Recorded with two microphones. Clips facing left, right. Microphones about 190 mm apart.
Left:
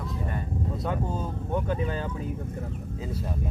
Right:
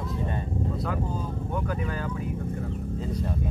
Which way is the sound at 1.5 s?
25° left (ahead or behind).